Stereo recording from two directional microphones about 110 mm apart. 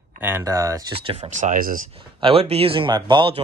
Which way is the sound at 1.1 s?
75° right (ahead or behind).